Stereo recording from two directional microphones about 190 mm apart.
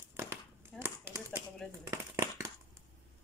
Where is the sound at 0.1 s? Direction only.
15° right (ahead or behind).